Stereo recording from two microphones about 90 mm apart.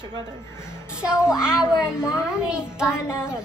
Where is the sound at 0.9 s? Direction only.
10° right (ahead or behind).